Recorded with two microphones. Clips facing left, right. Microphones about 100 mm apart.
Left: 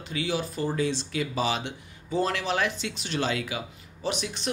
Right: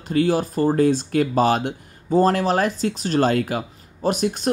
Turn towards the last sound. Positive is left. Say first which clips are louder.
# right 10 dB
turn(degrees=-45)  # may be behind; listen again after turning